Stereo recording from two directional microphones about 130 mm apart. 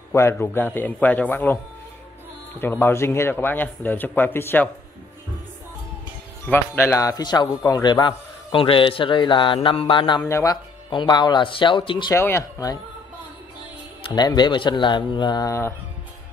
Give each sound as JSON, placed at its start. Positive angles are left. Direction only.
{"t": 0.1, "sound": "speech", "side_deg": 20}
{"t": 2.6, "sound": "speech", "side_deg": 15}
{"t": 6.4, "sound": "speech", "side_deg": 15}
{"t": 10.2, "sound": "speech", "side_deg": 25}
{"t": 10.9, "sound": "speech", "side_deg": 35}
{"t": 12.1, "sound": "speech", "side_deg": 20}
{"t": 14.0, "sound": "speech", "side_deg": 35}